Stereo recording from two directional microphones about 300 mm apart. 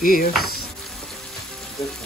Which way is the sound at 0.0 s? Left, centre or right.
Left.